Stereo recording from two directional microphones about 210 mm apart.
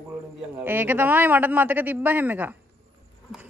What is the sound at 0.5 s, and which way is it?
A woman's voice, 10° right (ahead or behind).